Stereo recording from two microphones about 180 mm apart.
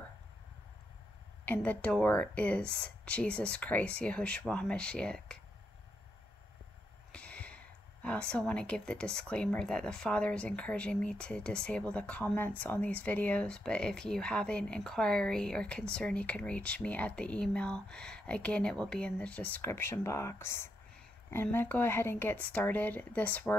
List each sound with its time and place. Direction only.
1.4 s speech: 10° left (ahead or behind)
7.1 s speech: 5° left (ahead or behind)